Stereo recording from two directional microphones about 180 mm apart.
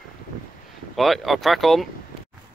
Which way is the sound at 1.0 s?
Centre (ahead or behind).